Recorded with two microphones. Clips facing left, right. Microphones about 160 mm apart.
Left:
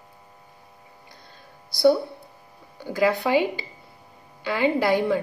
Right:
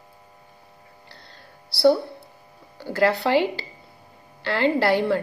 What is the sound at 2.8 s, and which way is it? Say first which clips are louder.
A woman's voice: right 1 dB; 15° left (ahead or behind).